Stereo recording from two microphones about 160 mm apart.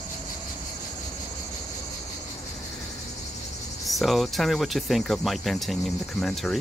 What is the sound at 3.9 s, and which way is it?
Speech, centre (ahead or behind).